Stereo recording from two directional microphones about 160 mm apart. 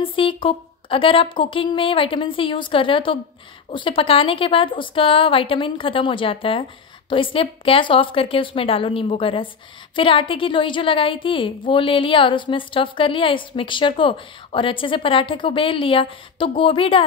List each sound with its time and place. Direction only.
0.0 s a woman's voice: 35° left (ahead or behind)